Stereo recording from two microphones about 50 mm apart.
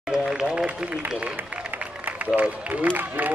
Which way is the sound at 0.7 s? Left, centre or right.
Right.